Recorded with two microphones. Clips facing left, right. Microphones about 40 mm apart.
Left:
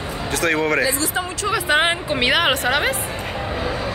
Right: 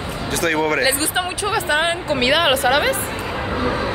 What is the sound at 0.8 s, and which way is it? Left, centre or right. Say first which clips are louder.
Speech: right 2 dB; right.